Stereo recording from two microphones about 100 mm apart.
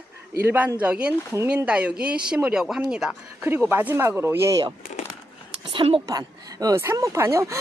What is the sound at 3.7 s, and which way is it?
Speech, 20° right (ahead or behind).